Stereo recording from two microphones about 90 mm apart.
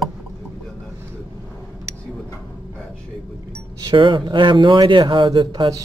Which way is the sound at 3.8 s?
60° right (ahead or behind).